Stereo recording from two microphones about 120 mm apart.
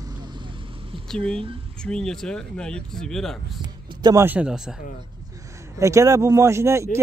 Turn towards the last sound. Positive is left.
turn(degrees=-25)  # may be behind; listen again after turning